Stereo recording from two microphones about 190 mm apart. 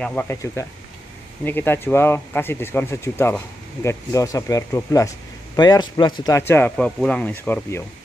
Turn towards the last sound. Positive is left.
turn(degrees=10)  # may be behind; listen again after turning